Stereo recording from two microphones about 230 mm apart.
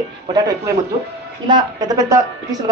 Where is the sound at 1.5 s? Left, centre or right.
Centre.